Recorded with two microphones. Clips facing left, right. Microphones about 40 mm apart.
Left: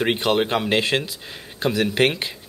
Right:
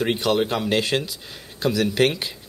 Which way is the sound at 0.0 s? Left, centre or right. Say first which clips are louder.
Left 1 dB; left.